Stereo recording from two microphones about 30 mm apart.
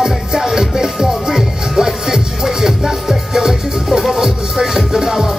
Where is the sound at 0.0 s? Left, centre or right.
Centre.